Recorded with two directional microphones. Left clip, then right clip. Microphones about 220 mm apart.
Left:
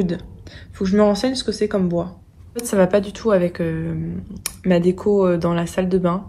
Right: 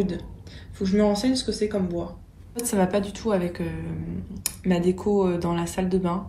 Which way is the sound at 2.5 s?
5° left (ahead or behind).